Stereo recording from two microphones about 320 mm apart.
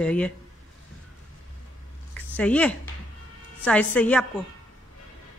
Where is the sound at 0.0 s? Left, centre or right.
Centre.